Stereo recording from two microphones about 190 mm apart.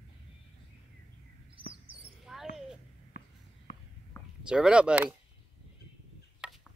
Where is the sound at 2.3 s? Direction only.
Centre (ahead or behind).